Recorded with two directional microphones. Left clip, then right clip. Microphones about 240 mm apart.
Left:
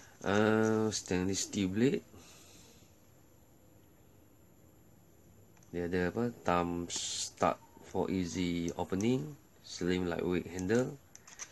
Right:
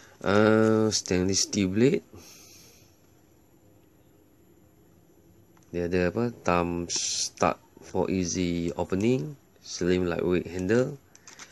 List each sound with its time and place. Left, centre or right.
0.2 s speech: right
5.7 s speech: right